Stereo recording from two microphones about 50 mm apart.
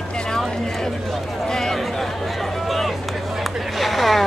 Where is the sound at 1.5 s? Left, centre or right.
Centre.